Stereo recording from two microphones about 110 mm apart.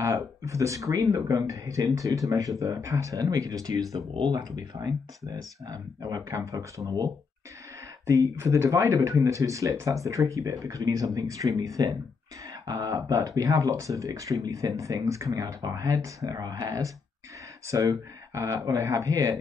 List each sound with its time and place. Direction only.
0.0 s speech: 30° right (ahead or behind)
8.1 s speech: 30° right (ahead or behind)